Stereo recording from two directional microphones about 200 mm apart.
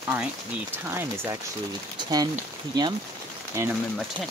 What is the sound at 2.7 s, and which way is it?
Speech, 20° right (ahead or behind).